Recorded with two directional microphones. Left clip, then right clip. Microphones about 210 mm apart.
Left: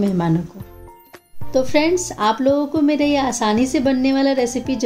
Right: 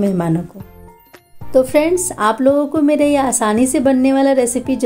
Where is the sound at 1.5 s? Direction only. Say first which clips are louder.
Right 4 dB; 15° right (ahead or behind).